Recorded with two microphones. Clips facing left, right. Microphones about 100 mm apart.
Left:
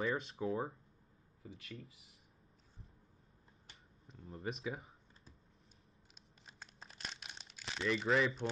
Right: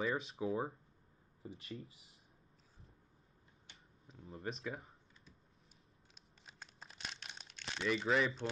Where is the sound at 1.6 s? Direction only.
30° right (ahead or behind).